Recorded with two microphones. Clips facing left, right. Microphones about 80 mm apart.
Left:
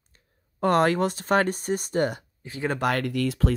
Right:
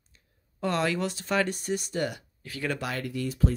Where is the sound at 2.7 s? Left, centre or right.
Left.